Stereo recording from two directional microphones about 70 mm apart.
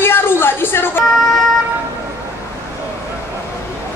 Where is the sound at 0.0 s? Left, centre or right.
Left.